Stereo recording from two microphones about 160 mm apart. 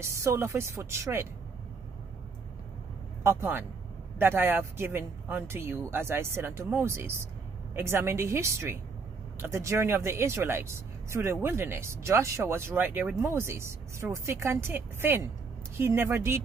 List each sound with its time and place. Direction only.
0.0 s speech: 15° right (ahead or behind)
3.3 s speech: 15° right (ahead or behind)